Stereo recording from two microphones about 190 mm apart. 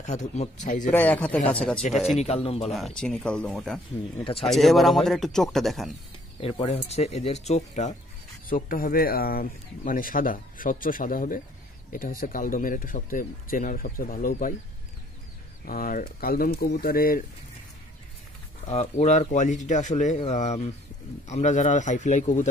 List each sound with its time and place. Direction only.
0.0 s speech: 40° left (ahead or behind)
0.8 s a man's voice: 10° left (ahead or behind)
1.9 s speech: 35° left (ahead or behind)
2.7 s speech: centre (ahead or behind)
4.2 s speech: 30° left (ahead or behind)
4.5 s speech: centre (ahead or behind)
6.4 s speech: 30° left (ahead or behind)
8.5 s speech: 45° left (ahead or behind)
15.6 s speech: 50° left (ahead or behind)
18.7 s speech: 35° left (ahead or behind)